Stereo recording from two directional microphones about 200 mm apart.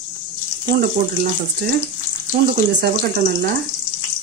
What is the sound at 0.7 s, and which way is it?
Speech, 50° right (ahead or behind).